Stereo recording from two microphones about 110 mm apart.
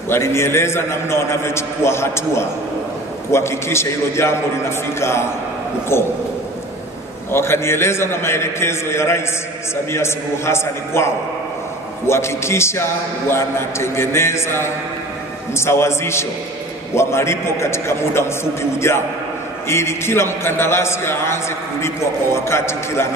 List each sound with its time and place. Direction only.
0.1 s a man's voice: 25° left (ahead or behind)
7.2 s a man's voice: 20° left (ahead or behind)